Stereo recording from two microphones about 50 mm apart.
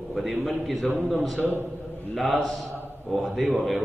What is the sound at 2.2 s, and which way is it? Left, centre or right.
A man's voice, centre.